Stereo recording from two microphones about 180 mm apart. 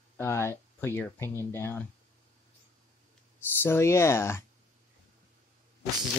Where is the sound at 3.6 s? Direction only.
15° left (ahead or behind).